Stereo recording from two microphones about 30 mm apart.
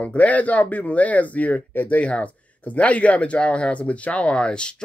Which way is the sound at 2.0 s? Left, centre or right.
Left.